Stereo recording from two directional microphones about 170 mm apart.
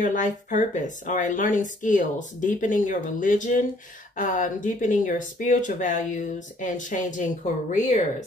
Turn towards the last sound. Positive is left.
turn(degrees=45)  # may be behind; listen again after turning